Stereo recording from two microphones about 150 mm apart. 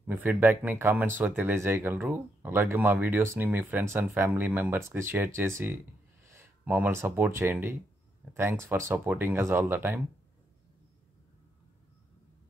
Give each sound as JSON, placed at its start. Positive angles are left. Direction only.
{"t": 0.0, "sound": "speech", "side_deg": -10}